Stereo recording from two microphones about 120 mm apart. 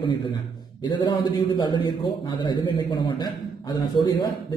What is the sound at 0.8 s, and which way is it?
A man's voice, 40° left (ahead or behind).